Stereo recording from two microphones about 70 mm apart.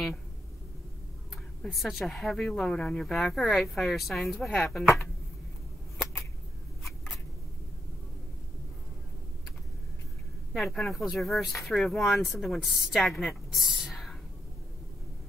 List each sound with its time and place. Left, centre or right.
1.6 s speech: centre
10.5 s speech: centre